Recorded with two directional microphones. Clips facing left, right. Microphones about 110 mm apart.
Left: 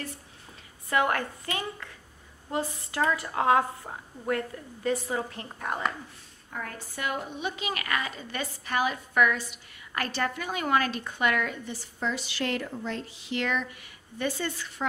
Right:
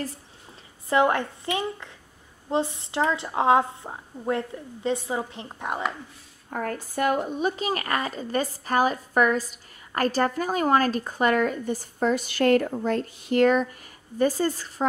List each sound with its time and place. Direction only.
0.8 s a woman's voice: 25° right (ahead or behind)
6.5 s a woman's voice: 45° right (ahead or behind)